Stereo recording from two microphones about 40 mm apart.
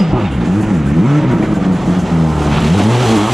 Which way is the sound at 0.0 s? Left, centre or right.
Centre.